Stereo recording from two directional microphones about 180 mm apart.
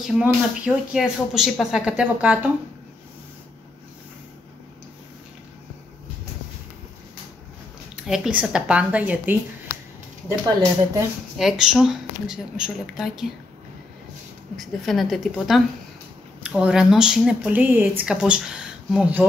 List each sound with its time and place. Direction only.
0.2 s speech: 5° right (ahead or behind)
7.9 s speech: 5° right (ahead or behind)
11.3 s speech: 5° right (ahead or behind)
14.6 s speech: centre (ahead or behind)